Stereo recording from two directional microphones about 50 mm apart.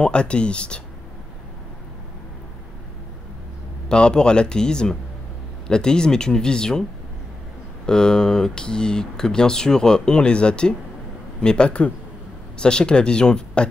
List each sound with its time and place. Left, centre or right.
0.0 s speech: left
3.9 s speech: centre
7.8 s speech: centre